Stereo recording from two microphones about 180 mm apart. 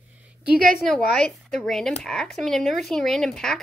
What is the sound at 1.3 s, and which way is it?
A child's voice, centre (ahead or behind).